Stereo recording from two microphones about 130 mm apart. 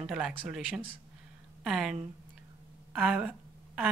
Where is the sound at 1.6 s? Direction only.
5° right (ahead or behind).